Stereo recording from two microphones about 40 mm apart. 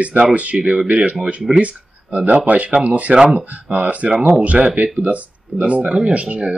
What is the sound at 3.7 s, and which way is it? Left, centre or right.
Speech, right.